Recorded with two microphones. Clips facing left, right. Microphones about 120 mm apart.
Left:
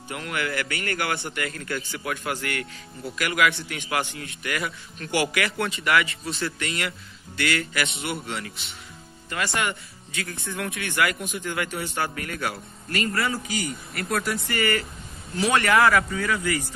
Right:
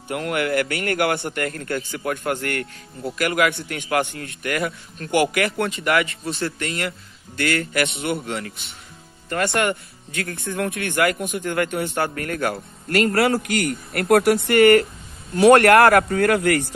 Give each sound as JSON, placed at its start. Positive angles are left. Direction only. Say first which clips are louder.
{"t": 0.1, "sound": "a man's voice", "louder": "right 7 dB", "side_deg": -55}
{"t": 12.9, "sound": "a man's voice", "louder": "right 8 dB", "side_deg": -70}